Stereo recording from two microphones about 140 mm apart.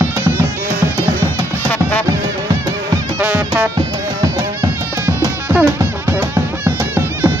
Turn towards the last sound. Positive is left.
turn(degrees=-15)  # may be behind; listen again after turning